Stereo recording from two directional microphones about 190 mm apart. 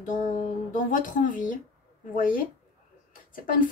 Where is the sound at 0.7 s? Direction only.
45° left (ahead or behind).